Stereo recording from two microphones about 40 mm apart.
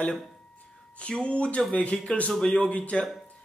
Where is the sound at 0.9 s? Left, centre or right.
Left.